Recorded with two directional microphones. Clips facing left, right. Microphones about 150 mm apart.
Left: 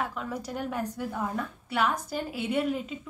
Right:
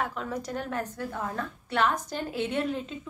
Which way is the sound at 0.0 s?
5° left (ahead or behind).